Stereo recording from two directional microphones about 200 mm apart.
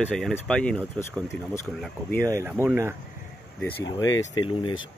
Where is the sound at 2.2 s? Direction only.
15° right (ahead or behind).